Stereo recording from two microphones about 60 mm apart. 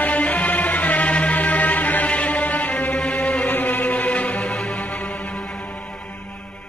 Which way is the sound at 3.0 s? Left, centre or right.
Centre.